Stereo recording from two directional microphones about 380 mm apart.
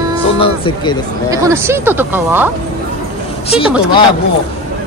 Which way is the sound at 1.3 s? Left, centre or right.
Centre.